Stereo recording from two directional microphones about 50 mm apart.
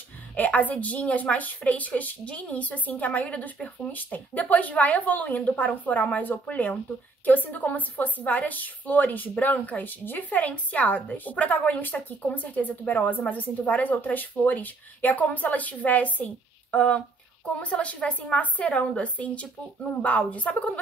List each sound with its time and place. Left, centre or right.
0.4 s a woman's voice: left
10.4 s a woman's voice: left